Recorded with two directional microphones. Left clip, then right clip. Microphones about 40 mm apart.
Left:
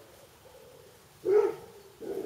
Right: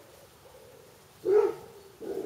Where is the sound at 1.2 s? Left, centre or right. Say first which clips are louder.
Right 1 dB; centre.